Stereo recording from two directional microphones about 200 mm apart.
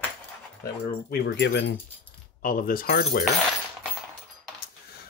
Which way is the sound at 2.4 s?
45° left (ahead or behind).